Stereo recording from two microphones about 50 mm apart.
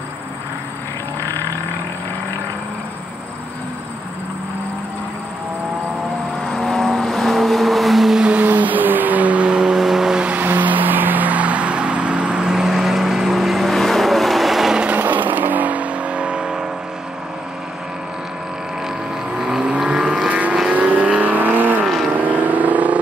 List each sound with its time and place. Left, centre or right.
6.5 s vehicle: centre
8.2 s a sound: right
8.5 s vehicle: right; by 9.8 s centre
9.8 s vehicle: centre
10.3 s vehicle: right; by 14.8 s centre
15.0 s vehicle: right
19.3 s vehicle: centre
20.2 s vehicle: right